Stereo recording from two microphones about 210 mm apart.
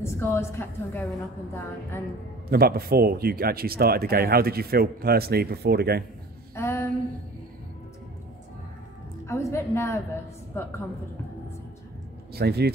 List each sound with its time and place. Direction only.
0.0 s a woman's voice: 10° left (ahead or behind)
2.5 s speech: 45° right (ahead or behind)
6.5 s a sound: 10° left (ahead or behind)
9.3 s a woman's voice: 15° left (ahead or behind)
12.4 s speech: 50° right (ahead or behind)